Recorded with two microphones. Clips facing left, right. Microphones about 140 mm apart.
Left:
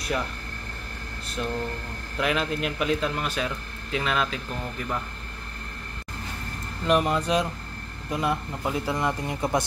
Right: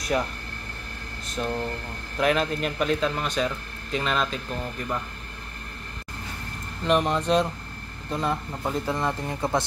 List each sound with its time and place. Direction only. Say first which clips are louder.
1.4 s speech: right 1 dB; 40° right (ahead or behind)
2.1 s speech: right 3 dB; centre (ahead or behind)
6.8 s speech: even; centre (ahead or behind)